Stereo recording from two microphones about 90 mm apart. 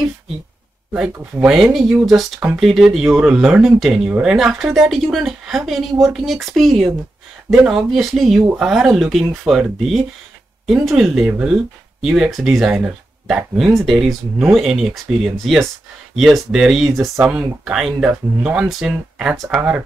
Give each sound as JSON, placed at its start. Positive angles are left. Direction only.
{"t": 0.9, "sound": "speech", "side_deg": -10}
{"t": 12.8, "sound": "speech", "side_deg": -15}
{"t": 13.7, "sound": "speech", "side_deg": 0}